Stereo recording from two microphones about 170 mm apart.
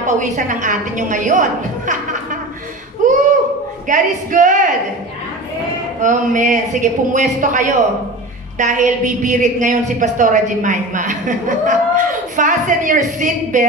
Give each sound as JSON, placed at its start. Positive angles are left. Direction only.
{"t": 0.0, "sound": "a woman's voice", "side_deg": -45}
{"t": 3.0, "sound": "a sound", "side_deg": -50}
{"t": 3.8, "sound": "a woman's voice", "side_deg": -50}
{"t": 6.0, "sound": "a woman's voice", "side_deg": -45}